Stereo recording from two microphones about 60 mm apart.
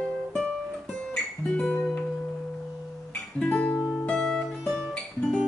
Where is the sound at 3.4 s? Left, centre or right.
Left.